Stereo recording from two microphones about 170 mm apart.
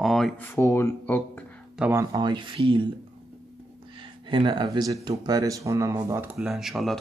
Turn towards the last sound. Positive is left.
turn(degrees=0)  # may be behind; listen again after turning